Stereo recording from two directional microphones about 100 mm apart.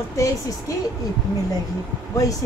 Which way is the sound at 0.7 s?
35° left (ahead or behind).